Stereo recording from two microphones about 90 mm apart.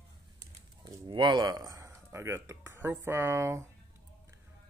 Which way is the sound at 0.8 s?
60° right (ahead or behind).